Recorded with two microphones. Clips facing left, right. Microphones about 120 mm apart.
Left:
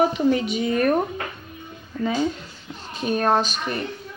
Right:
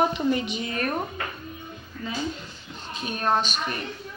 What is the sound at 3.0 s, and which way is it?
Speech, 40° left (ahead or behind).